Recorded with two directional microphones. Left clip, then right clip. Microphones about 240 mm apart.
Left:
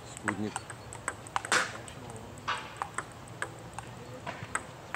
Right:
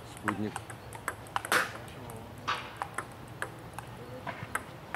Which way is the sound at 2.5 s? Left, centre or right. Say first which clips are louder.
Right 1 dB; right.